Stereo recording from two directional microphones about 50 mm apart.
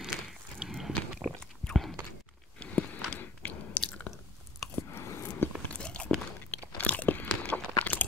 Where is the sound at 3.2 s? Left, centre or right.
Left.